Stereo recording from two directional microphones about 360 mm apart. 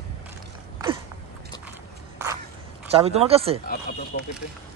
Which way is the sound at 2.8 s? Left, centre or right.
Centre.